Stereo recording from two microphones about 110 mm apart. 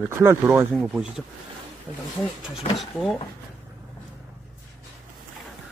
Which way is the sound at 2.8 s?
Centre (ahead or behind).